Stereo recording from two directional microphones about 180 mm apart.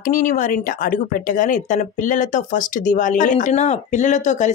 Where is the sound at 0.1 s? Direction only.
45° left (ahead or behind).